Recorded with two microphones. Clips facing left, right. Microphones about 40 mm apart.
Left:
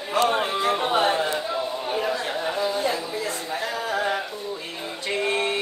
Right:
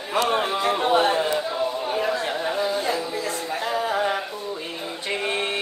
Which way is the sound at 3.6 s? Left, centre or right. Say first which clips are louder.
Right 3 dB; centre.